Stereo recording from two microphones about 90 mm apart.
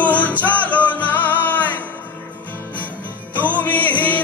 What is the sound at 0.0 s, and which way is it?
Music, 15° left (ahead or behind).